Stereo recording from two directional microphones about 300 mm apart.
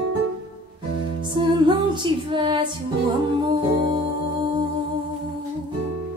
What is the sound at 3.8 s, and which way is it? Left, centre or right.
Music, centre.